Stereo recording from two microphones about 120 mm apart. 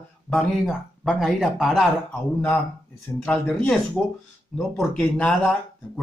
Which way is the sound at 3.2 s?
10° left (ahead or behind).